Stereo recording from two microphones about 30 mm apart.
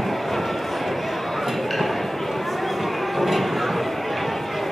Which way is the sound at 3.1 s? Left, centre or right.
Centre.